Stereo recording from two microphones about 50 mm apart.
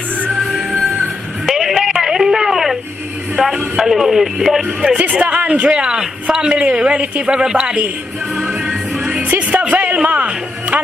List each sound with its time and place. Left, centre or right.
0.7 s music: centre
2.0 s a sound: centre
3.5 s speech: centre
4.9 s speech: right
8.4 s music: centre
9.0 s music: right